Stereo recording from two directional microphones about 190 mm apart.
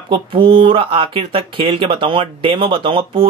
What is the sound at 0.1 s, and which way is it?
Speech, 25° right (ahead or behind).